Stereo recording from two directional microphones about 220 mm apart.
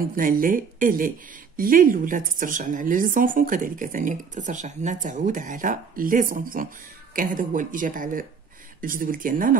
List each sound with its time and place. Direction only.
0.1 s speech: 40° right (ahead or behind)